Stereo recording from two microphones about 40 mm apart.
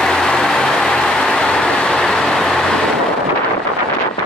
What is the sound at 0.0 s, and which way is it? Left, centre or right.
Vehicle, centre.